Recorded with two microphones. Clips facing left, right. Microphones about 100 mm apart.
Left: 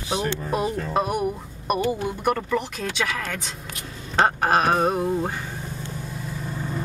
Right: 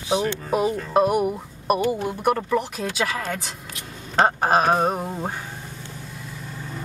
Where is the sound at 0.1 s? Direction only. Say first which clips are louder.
Right 3 dB; 10° right (ahead or behind).